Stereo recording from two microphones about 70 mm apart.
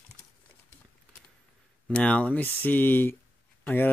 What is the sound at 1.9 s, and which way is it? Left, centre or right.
Speech, centre.